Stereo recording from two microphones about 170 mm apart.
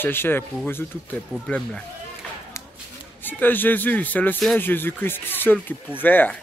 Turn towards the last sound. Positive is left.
turn(degrees=10)  # may be behind; listen again after turning